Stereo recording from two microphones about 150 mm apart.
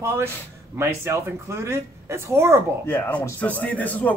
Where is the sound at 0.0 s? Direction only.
15° right (ahead or behind).